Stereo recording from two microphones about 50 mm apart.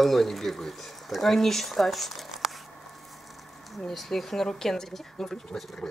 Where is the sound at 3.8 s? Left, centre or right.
Centre.